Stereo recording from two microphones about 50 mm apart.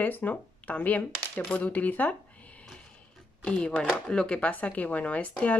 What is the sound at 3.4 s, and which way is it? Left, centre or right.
Speech, left.